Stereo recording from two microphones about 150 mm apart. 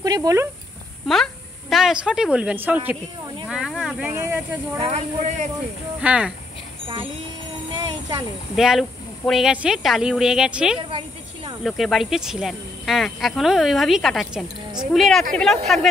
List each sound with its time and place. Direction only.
0.0 s speech: 25° right (ahead or behind)
1.0 s speech: centre (ahead or behind)
3.4 s snake: 5° right (ahead or behind)
4.1 s speech: 15° right (ahead or behind)
4.7 s speech: 45° right (ahead or behind)
5.9 s speech: 5° right (ahead or behind)
8.5 s speech: centre (ahead or behind)
10.9 s a sound: 35° right (ahead or behind)
11.6 s speech: centre (ahead or behind)